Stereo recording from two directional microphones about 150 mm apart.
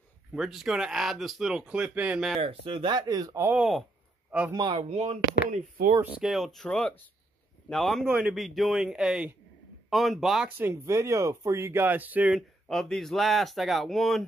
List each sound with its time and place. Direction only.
0.3 s speech: centre (ahead or behind)
2.4 s speech: 35° right (ahead or behind)
3.4 s speech: 5° right (ahead or behind)
4.5 s speech: 30° right (ahead or behind)
4.8 s speech: 45° right (ahead or behind)
6.0 s speech: 5° right (ahead or behind)
10.6 s speech: 20° right (ahead or behind); by 14.2 s centre (ahead or behind)